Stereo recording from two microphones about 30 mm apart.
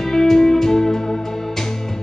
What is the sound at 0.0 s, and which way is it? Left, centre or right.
Music, centre.